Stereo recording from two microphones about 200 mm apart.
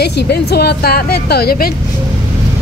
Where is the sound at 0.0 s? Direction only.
55° left (ahead or behind).